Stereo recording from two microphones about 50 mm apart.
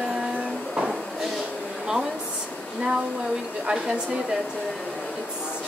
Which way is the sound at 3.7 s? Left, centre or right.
Right.